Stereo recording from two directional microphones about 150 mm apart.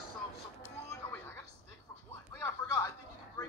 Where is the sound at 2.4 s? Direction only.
20° left (ahead or behind).